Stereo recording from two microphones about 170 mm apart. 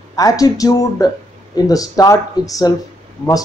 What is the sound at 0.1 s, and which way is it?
Speech, 20° left (ahead or behind).